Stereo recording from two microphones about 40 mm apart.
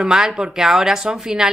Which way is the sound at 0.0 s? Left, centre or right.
Centre.